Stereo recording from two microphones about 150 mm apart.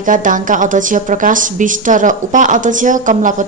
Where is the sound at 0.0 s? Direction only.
60° right (ahead or behind).